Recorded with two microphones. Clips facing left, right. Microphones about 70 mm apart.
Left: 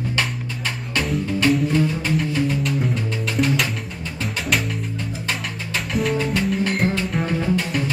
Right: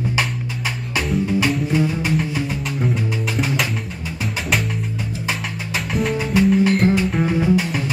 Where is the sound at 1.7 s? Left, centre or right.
Centre.